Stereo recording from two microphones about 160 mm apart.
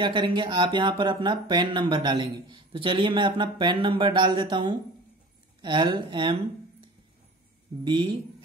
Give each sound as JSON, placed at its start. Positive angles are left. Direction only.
{"t": 0.0, "sound": "speech", "side_deg": -30}
{"t": 7.8, "sound": "speech", "side_deg": -30}